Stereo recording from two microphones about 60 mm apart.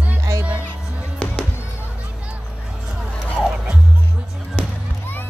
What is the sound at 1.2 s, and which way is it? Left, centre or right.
Music, left.